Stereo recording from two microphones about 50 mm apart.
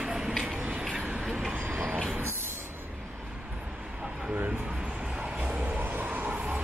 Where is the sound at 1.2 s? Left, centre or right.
Centre.